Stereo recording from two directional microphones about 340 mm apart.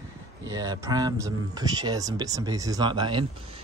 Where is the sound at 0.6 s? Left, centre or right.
Centre.